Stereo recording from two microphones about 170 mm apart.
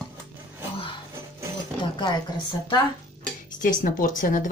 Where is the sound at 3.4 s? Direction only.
50° left (ahead or behind).